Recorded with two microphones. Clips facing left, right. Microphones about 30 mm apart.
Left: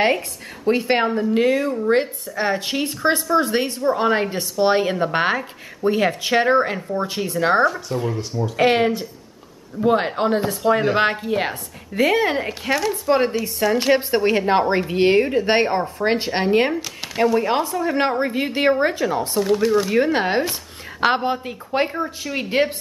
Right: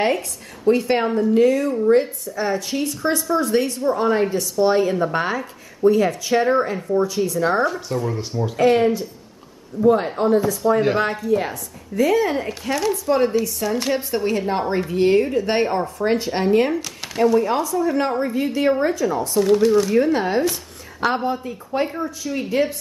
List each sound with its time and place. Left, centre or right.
0.7 s a woman's voice: left
7.6 s speech: centre
8.5 s a woman's voice: left
12.4 s a woman's voice: left
13.9 s a woman's voice: left
19.4 s speech: centre
19.9 s a woman's voice: left